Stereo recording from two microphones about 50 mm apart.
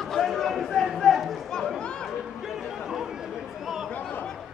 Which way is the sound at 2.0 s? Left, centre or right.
Centre.